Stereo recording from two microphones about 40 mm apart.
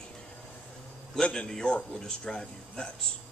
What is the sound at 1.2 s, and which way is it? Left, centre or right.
A man's voice, centre.